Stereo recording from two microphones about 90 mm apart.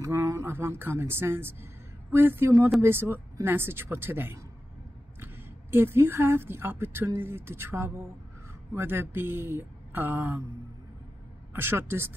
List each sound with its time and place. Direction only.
0.0 s a woman's voice: 35° right (ahead or behind)
11.5 s speech: 25° right (ahead or behind)